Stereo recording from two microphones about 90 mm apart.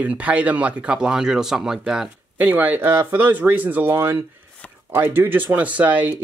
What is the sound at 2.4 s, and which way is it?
Speech, 20° right (ahead or behind).